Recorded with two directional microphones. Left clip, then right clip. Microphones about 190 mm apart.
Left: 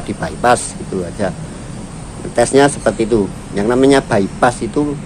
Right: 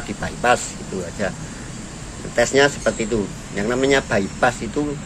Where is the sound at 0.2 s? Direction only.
15° left (ahead or behind).